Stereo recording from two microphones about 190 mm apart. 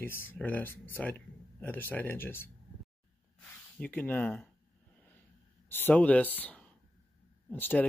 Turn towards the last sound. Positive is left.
turn(degrees=10)  # may be behind; listen again after turning